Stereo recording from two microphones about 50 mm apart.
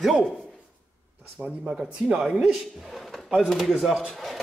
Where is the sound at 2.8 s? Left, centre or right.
Centre.